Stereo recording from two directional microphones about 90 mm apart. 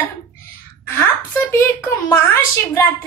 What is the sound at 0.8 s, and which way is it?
A woman's voice, 20° left (ahead or behind).